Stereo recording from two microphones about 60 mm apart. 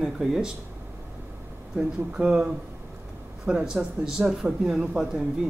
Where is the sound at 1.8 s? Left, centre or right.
Centre.